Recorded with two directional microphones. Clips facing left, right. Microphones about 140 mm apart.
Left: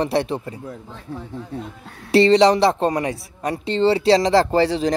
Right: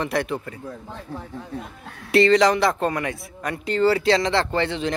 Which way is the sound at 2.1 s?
30° left (ahead or behind).